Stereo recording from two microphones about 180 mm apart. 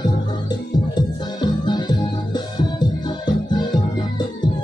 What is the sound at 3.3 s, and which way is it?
Music, 25° left (ahead or behind).